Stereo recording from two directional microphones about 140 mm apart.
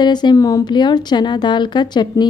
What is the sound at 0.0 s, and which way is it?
A woman's voice, 30° left (ahead or behind).